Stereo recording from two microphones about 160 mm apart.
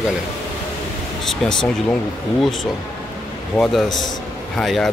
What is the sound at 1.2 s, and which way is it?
Speech, 5° left (ahead or behind).